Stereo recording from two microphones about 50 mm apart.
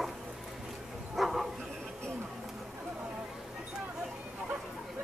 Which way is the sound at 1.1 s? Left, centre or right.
Centre.